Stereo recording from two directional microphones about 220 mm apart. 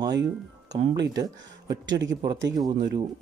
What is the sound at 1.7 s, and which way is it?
Speech, 55° right (ahead or behind).